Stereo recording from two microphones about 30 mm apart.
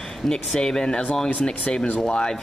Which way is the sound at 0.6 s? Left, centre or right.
Left.